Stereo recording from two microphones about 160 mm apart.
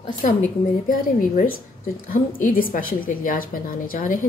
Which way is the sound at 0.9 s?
60° left (ahead or behind).